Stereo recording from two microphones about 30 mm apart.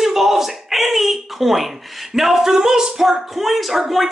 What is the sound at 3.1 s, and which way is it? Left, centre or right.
Speech, centre.